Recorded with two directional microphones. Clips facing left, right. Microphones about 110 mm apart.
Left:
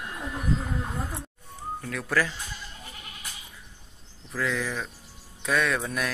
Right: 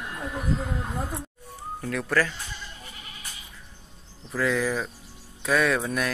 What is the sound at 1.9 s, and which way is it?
Speech, centre (ahead or behind).